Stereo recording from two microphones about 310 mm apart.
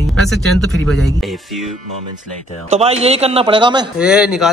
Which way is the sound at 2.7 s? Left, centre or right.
Centre.